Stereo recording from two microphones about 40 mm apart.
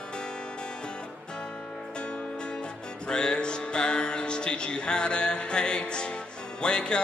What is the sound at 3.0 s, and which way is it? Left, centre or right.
Music, left.